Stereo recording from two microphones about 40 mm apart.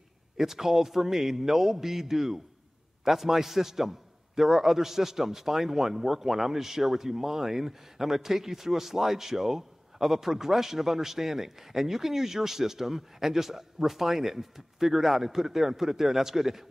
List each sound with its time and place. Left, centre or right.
0.4 s a man's voice: centre